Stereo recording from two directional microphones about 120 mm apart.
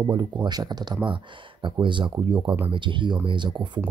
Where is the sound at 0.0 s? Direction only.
40° right (ahead or behind).